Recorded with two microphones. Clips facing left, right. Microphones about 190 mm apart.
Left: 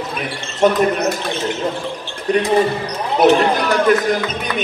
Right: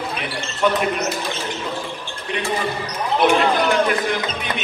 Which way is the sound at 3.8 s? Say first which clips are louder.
Left 6 dB; 40° left (ahead or behind).